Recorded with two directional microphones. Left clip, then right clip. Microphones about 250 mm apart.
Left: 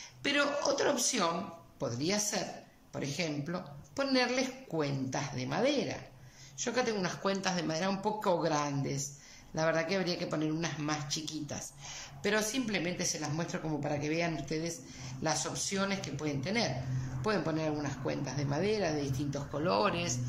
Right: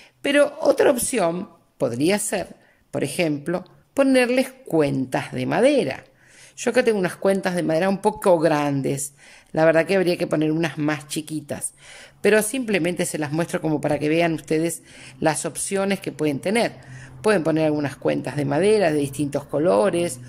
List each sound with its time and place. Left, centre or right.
0.2 s speech: right